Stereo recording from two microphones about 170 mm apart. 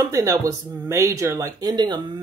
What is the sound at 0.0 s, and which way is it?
Speech, 20° right (ahead or behind).